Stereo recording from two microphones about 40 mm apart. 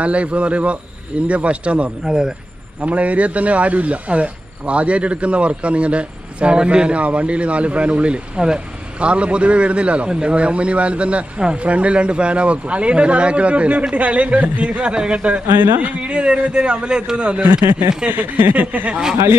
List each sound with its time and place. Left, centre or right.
0.0 s speech: right
2.0 s a man's voice: centre
2.8 s speech: right
10.0 s a man's voice: centre
10.3 s speech: right
15.4 s speech: right
16.0 s a man's voice: right
18.1 s speech: right
18.5 s speech: right